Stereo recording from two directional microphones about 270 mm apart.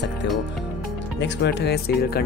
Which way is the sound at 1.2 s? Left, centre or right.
Left.